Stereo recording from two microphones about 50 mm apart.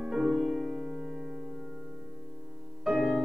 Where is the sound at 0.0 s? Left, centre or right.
Centre.